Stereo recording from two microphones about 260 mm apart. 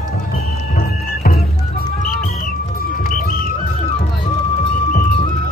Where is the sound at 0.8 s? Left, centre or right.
Left.